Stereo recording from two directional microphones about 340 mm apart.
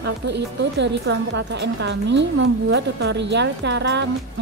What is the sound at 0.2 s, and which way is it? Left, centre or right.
Speech, right.